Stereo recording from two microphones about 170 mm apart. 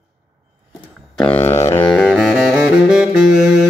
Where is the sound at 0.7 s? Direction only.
5° left (ahead or behind).